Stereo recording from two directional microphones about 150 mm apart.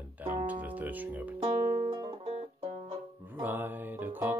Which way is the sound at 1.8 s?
35° right (ahead or behind).